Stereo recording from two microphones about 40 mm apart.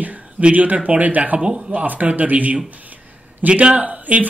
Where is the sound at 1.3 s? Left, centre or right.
Right.